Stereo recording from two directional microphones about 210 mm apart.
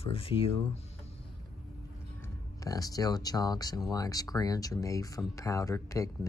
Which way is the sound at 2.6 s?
15° left (ahead or behind).